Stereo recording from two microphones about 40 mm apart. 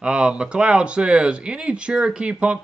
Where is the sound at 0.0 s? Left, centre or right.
Right.